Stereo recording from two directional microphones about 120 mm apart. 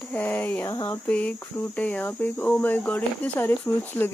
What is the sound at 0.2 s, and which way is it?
Speech, 15° left (ahead or behind).